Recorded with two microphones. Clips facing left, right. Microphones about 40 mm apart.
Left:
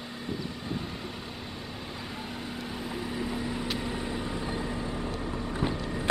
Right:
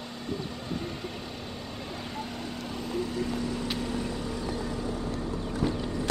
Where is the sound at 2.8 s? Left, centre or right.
Centre.